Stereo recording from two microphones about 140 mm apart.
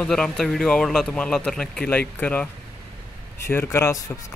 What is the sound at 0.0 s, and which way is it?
Speech, 5° left (ahead or behind).